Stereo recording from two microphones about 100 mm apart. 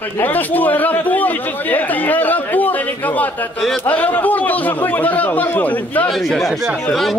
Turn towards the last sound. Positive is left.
turn(degrees=0)  # may be behind; listen again after turning